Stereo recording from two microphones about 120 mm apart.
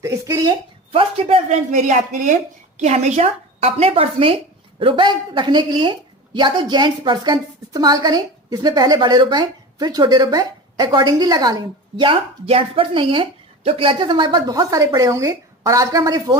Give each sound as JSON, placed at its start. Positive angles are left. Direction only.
{"t": 0.0, "sound": "a sound", "side_deg": -25}
{"t": 1.2, "sound": "a woman's voice", "side_deg": -75}
{"t": 2.8, "sound": "a woman's voice", "side_deg": -65}
{"t": 12.0, "sound": "a woman's voice", "side_deg": -50}